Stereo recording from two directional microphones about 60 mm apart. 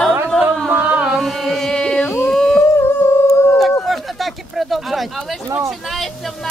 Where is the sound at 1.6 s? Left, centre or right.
Centre.